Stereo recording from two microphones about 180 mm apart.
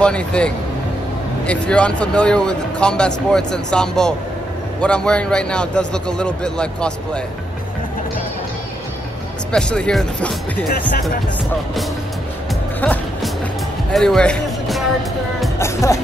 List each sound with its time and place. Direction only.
0.0 s speech: 5° left (ahead or behind)
9.5 s speech: 5° left (ahead or behind)
12.8 s music: 5° left (ahead or behind)
15.6 s speech: 15° left (ahead or behind)